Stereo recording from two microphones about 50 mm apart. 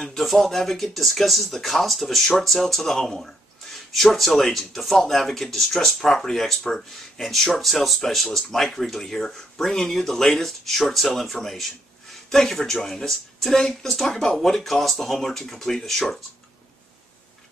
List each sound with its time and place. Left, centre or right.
0.0 s speech: centre